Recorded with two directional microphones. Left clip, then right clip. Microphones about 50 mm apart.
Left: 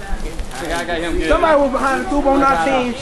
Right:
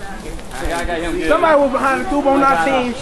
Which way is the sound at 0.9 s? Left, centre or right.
Left.